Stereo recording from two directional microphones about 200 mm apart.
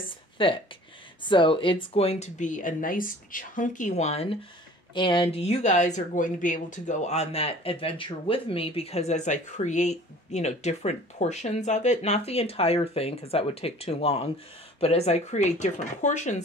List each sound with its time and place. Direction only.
0.4 s speech: 25° left (ahead or behind)